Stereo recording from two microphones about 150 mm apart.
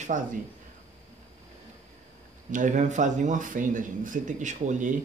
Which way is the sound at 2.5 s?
55° right (ahead or behind).